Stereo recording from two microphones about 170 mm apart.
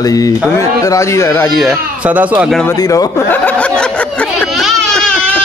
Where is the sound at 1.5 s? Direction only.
5° right (ahead or behind).